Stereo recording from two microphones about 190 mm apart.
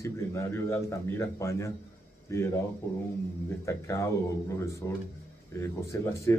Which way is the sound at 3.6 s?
15° left (ahead or behind).